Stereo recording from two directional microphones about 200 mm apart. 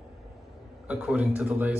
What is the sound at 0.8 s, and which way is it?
Speech, 5° right (ahead or behind).